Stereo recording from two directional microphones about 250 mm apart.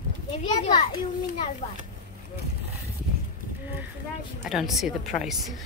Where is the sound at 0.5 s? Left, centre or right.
Centre.